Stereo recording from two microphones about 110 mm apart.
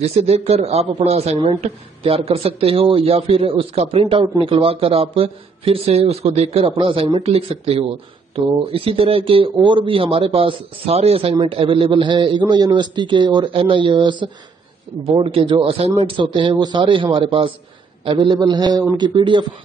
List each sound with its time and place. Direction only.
0.0 s speech: 75° right (ahead or behind); by 7.2 s 55° right (ahead or behind)
7.2 s a man's voice: 70° right (ahead or behind); by 19.4 s 45° right (ahead or behind)